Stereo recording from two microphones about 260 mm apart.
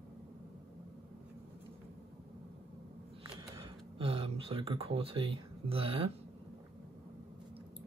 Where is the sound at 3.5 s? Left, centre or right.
Right.